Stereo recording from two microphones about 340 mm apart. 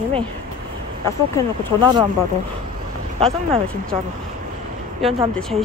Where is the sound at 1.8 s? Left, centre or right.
Centre.